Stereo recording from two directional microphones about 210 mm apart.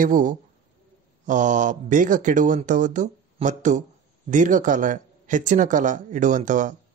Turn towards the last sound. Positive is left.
turn(degrees=-35)  # may be behind; listen again after turning